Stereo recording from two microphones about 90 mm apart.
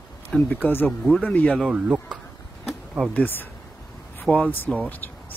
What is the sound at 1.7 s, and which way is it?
Speech, 15° right (ahead or behind).